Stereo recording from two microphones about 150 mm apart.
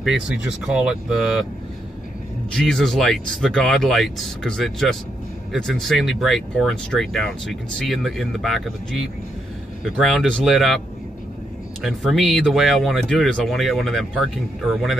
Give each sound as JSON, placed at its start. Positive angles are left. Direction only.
{"t": 0.0, "sound": "speech", "side_deg": 0}
{"t": 2.5, "sound": "speech", "side_deg": 5}
{"t": 11.8, "sound": "speech", "side_deg": 0}